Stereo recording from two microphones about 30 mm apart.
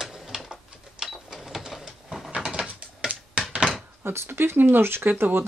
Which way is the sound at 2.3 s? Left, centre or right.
Right.